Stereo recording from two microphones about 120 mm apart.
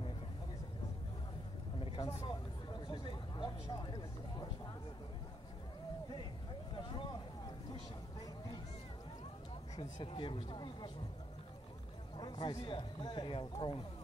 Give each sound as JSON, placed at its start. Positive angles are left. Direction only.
{"t": 1.8, "sound": "vehicle", "side_deg": 45}
{"t": 2.2, "sound": "speech", "side_deg": 40}
{"t": 6.7, "sound": "a sound", "side_deg": 45}
{"t": 9.8, "sound": "speech", "side_deg": 45}
{"t": 12.2, "sound": "speech", "side_deg": 40}